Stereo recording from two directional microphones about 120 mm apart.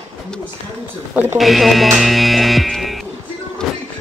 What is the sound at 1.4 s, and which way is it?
Speech, centre (ahead or behind).